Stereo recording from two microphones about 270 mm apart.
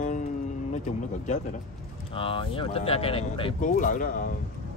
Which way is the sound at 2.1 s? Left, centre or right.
Centre.